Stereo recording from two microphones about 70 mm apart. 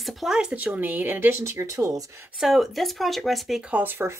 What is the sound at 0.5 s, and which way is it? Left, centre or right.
Speech, right.